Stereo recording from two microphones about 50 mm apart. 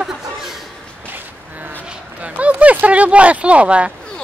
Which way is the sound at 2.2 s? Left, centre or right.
Right.